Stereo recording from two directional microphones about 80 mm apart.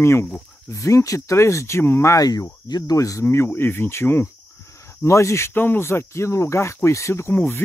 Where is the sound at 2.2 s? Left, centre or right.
Left.